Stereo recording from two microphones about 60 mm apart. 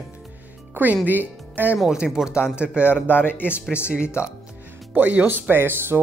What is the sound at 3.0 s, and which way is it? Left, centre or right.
Speech, left.